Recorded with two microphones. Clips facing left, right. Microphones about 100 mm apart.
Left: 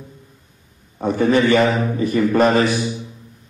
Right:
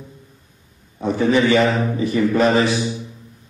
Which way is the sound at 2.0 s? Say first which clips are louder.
Left 2 dB; 50° left (ahead or behind).